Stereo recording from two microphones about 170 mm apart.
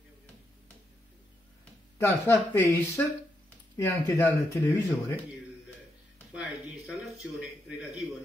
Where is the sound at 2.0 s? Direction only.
15° left (ahead or behind).